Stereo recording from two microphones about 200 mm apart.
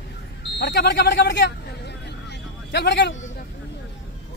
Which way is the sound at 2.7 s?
60° left (ahead or behind).